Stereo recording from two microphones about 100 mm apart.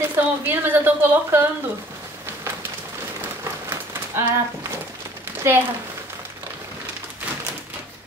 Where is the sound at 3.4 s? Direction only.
30° right (ahead or behind).